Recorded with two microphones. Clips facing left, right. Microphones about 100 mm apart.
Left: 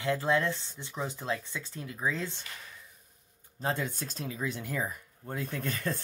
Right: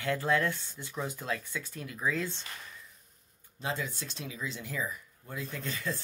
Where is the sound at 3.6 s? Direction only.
50° left (ahead or behind).